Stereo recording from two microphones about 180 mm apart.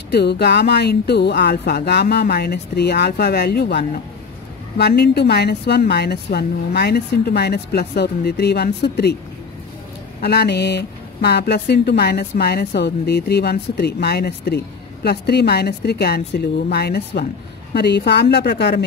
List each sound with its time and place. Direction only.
0.1 s speech: 65° left (ahead or behind)
10.2 s a woman's voice: 65° left (ahead or behind)